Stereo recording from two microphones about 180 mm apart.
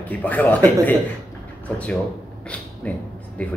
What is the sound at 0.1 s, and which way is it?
Speech, 10° left (ahead or behind).